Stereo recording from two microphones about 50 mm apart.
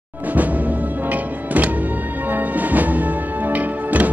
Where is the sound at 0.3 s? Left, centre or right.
Right.